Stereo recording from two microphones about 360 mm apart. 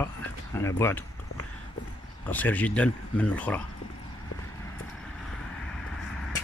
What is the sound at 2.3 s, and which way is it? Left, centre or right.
Speech, centre.